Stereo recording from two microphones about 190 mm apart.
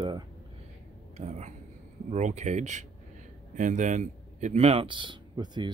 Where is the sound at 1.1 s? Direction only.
40° right (ahead or behind).